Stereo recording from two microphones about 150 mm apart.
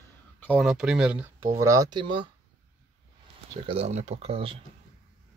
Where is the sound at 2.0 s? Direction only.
35° right (ahead or behind).